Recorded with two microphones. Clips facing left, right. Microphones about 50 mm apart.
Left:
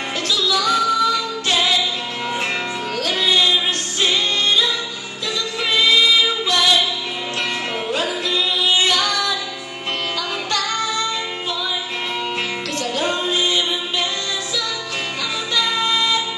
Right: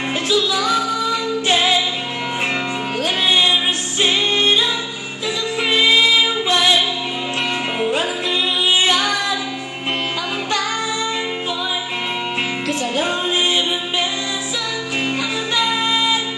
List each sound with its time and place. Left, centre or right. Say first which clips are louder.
0.3 s music: right 1 dB; centre
3.0 s music: right 1 dB; right
5.7 s singing: right 1 dB; right
7.8 s music: right 3 dB; centre
12.9 s music: left 1 dB; centre
15.5 s music: right 1 dB; centre